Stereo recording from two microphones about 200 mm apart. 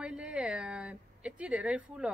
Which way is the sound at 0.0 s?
5° right (ahead or behind).